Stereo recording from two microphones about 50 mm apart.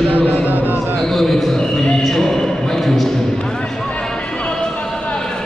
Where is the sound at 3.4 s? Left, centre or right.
Centre.